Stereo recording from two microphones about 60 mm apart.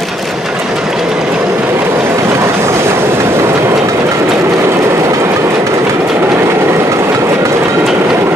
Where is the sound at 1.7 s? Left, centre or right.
Right.